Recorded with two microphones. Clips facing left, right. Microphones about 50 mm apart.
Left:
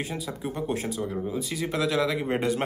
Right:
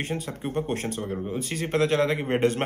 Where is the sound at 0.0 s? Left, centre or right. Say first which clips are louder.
Right 2 dB; right.